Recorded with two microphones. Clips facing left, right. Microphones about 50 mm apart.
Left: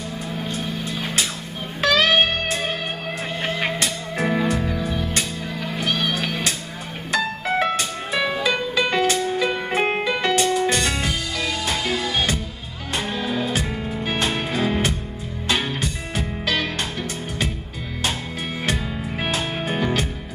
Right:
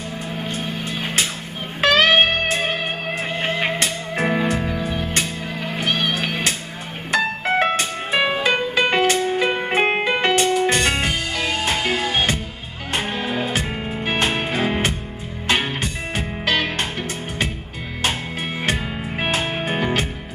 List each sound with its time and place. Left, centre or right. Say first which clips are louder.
0.3 s music: right 1 dB; right
4.7 s music: right 1 dB; right
18.6 s music: right 1 dB; right